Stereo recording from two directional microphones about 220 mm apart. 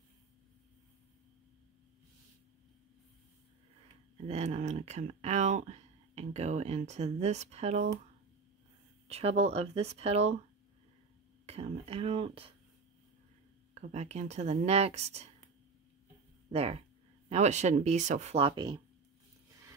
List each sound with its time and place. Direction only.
4.3 s speech: 30° right (ahead or behind)
9.0 s speech: 30° right (ahead or behind)
11.4 s speech: 30° right (ahead or behind)
13.7 s speech: 30° right (ahead or behind)
16.5 s speech: 25° right (ahead or behind)